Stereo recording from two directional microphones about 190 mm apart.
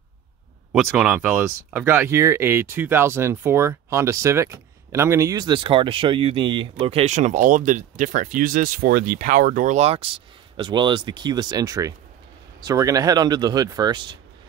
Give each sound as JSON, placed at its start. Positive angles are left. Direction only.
{"t": 0.7, "sound": "speech", "side_deg": -5}